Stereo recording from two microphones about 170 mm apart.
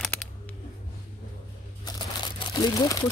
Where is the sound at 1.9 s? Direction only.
25° left (ahead or behind).